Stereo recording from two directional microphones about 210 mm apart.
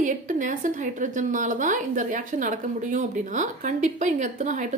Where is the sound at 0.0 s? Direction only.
35° right (ahead or behind).